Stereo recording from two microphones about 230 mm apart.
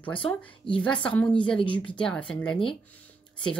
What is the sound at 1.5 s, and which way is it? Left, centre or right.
Speech, left.